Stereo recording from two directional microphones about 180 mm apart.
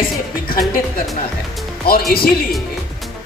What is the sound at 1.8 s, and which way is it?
Speech, 55° left (ahead or behind).